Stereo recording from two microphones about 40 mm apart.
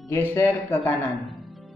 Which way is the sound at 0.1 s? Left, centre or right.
Left.